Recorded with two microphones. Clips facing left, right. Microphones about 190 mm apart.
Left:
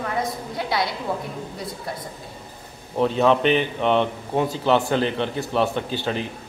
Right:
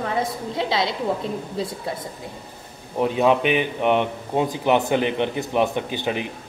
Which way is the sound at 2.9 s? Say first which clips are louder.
Even; 10° right (ahead or behind).